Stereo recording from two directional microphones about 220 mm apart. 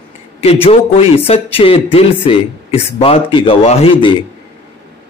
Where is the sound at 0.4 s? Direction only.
25° left (ahead or behind).